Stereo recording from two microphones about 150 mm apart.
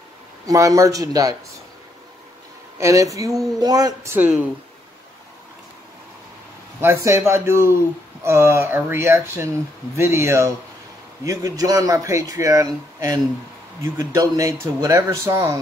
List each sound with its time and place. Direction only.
0.5 s speech: 20° right (ahead or behind)
2.8 s speech: 20° right (ahead or behind)
7.1 s speech: 15° right (ahead or behind)